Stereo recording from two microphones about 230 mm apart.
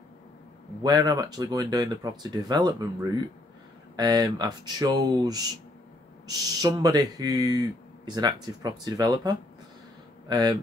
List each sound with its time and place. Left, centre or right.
0.8 s speech: centre